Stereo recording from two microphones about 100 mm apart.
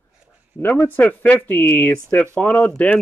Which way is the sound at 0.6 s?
20° left (ahead or behind).